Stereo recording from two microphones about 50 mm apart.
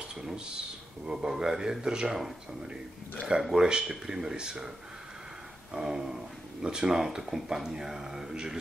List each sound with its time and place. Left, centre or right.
1.0 s speech: centre
5.7 s speech: centre